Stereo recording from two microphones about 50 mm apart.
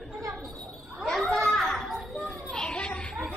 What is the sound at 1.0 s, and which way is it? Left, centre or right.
Children playing, centre.